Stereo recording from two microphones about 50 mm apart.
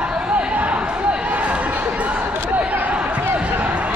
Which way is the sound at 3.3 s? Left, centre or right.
Right.